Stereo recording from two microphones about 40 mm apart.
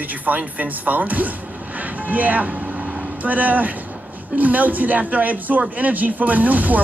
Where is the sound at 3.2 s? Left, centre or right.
Right.